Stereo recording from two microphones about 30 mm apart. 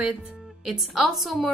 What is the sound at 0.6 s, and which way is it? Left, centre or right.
Speech, centre.